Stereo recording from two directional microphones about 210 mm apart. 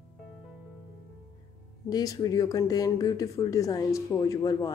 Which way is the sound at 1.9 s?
15° left (ahead or behind).